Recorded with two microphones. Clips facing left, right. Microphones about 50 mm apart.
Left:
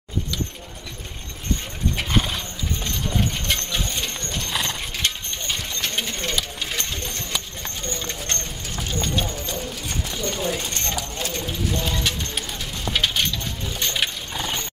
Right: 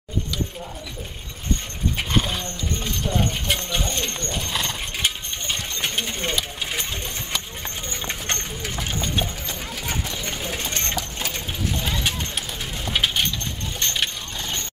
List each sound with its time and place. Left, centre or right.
2.0 s clip-clop: centre
4.9 s coin: centre
5.9 s a sound: centre
6.3 s music: centre
7.9 s a sound: right
9.2 s clip-clop: centre
12.4 s bird: centre
13.4 s dog: centre